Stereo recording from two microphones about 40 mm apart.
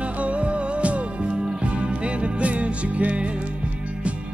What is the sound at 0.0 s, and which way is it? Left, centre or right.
Music, right.